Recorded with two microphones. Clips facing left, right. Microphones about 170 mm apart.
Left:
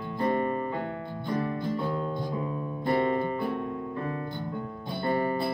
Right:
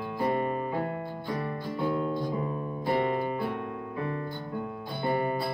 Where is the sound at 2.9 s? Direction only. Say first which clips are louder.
Left 2 dB; 15° right (ahead or behind).